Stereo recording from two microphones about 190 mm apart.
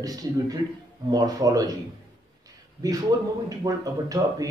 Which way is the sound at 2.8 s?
20° right (ahead or behind).